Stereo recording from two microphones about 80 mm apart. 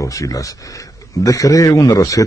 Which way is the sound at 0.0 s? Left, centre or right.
Left.